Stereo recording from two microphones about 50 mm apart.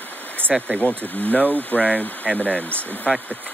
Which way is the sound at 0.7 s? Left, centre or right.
Left.